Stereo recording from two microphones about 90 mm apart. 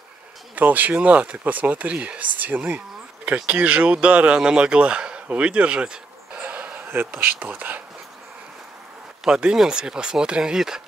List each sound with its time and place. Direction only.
0.6 s speech: 20° right (ahead or behind)
9.2 s speech: 10° right (ahead or behind)